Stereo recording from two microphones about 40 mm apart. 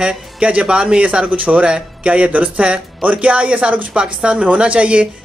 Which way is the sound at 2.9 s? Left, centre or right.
Right.